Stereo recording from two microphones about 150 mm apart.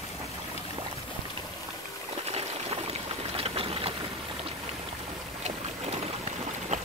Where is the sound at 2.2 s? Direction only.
45° right (ahead or behind).